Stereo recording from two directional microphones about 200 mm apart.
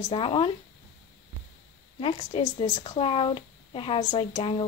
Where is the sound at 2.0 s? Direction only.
30° left (ahead or behind).